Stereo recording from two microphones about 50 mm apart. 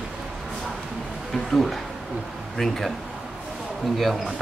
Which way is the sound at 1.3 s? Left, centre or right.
Centre.